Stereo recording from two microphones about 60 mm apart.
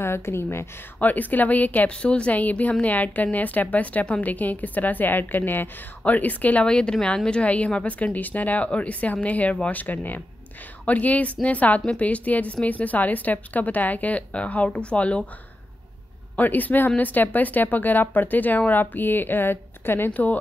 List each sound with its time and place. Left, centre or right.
0.0 s a woman's voice: left
0.9 s a woman's voice: left
6.6 s a woman's voice: centre
16.3 s speech: left
20.1 s a woman's voice: left